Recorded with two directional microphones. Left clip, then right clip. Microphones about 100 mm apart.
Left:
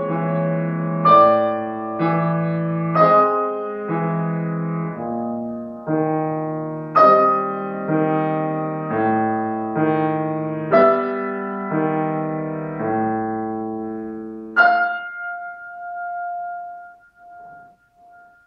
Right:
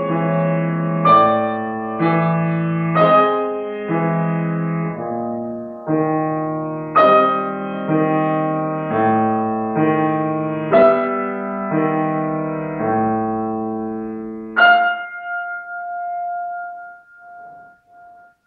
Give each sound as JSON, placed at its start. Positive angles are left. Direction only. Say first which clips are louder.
{"t": 0.0, "sound": "music", "louder": "right 3 dB", "side_deg": 25}
{"t": 2.6, "sound": "music", "louder": "right 2 dB", "side_deg": 15}
{"t": 3.1, "sound": "music", "louder": "right 3 dB", "side_deg": 0}
{"t": 3.5, "sound": "music", "louder": "right 2 dB", "side_deg": 25}
{"t": 5.1, "sound": "music", "louder": "right 2 dB", "side_deg": 10}
{"t": 5.9, "sound": "music", "louder": "right 2 dB", "side_deg": 20}
{"t": 7.1, "sound": "music", "louder": "right 1 dB", "side_deg": 0}
{"t": 7.8, "sound": "music", "louder": "right 3 dB", "side_deg": 25}
{"t": 11.0, "sound": "music", "louder": "right 3 dB", "side_deg": 5}
{"t": 11.3, "sound": "music", "louder": "right 2 dB", "side_deg": 15}
{"t": 12.4, "sound": "piano", "louder": "right 3 dB", "side_deg": 25}